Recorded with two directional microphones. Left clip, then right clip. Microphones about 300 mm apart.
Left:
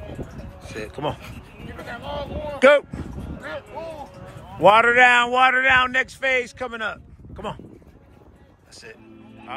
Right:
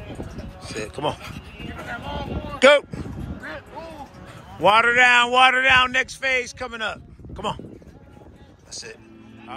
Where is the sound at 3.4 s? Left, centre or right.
Left.